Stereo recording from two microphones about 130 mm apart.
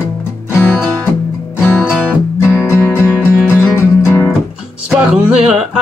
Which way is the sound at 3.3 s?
15° left (ahead or behind).